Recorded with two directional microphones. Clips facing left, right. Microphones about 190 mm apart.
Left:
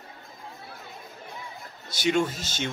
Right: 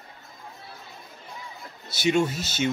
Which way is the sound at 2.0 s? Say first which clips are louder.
Right 2 dB; 10° right (ahead or behind).